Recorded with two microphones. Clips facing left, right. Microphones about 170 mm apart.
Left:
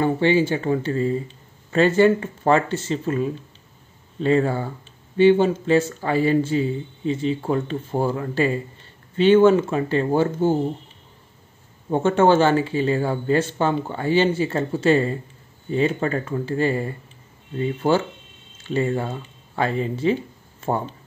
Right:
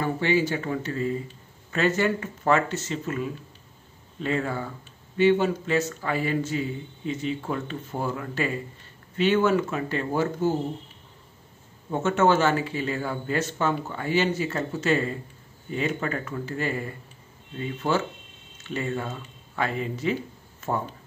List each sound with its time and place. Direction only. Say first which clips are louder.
0.0 s speech: left 5 dB; 30° left (ahead or behind)
11.9 s speech: left 5 dB; 30° left (ahead or behind)